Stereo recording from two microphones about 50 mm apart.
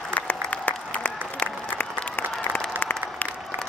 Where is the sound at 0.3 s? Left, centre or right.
Left.